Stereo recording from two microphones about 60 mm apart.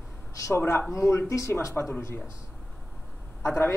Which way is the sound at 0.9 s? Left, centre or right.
Left.